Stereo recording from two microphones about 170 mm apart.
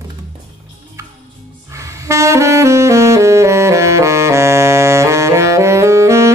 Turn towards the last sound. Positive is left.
turn(degrees=-15)  # may be behind; listen again after turning